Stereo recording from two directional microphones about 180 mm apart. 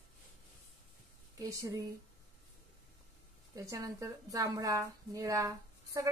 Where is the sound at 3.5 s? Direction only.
20° right (ahead or behind).